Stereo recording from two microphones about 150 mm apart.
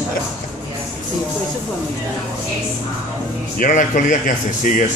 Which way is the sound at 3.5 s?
60° left (ahead or behind).